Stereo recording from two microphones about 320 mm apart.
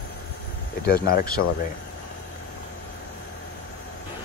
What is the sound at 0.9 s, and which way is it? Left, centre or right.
Speech, left.